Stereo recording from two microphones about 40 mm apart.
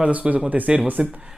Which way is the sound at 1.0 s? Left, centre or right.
Right.